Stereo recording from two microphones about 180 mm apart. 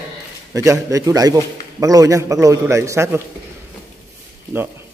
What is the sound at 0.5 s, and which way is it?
A man's voice, 20° right (ahead or behind).